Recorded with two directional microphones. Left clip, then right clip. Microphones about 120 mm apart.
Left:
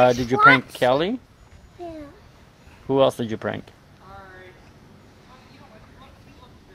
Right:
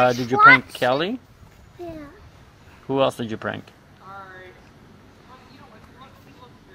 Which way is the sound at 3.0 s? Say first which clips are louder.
Left 2 dB; 50° left (ahead or behind).